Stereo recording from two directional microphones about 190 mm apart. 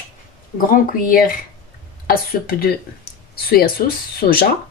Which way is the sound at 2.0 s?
50° left (ahead or behind).